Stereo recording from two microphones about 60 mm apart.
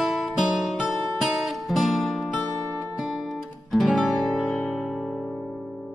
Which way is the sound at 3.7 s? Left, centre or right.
Centre.